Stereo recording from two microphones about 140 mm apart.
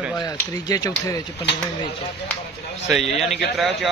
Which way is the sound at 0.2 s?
25° left (ahead or behind).